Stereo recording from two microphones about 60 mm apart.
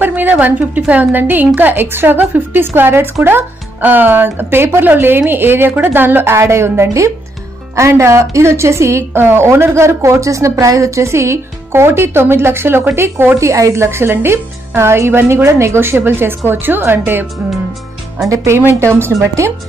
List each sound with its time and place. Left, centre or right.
0.0 s a woman's voice: right
2.6 s a woman's voice: right
13.4 s a woman's voice: right
18.3 s speech: right